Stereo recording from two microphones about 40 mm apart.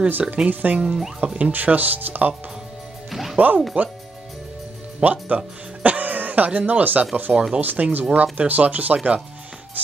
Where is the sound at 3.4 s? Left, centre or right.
Right.